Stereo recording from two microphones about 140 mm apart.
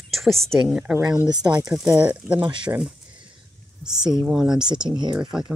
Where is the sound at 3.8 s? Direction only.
5° right (ahead or behind).